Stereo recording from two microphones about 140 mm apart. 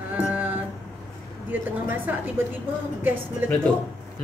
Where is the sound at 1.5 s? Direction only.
15° right (ahead or behind).